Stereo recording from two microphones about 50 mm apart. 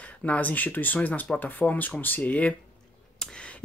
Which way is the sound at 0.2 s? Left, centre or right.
Left.